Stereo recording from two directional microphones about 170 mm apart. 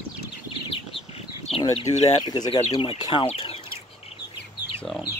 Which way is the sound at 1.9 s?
40° left (ahead or behind).